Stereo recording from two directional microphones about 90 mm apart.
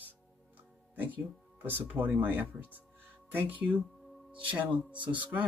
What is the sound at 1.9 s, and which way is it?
Speech, 20° right (ahead or behind).